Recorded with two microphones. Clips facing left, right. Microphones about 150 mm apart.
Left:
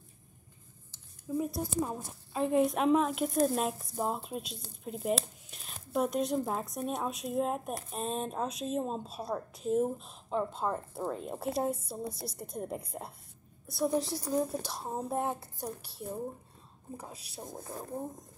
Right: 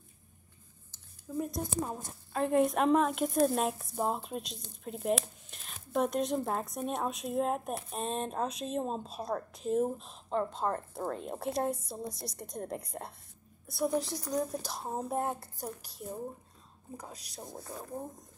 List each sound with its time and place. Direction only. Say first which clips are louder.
1.3 s a woman's voice: left 2 dB; 5° left (ahead or behind)
16.9 s speech: left 1 dB; 5° left (ahead or behind)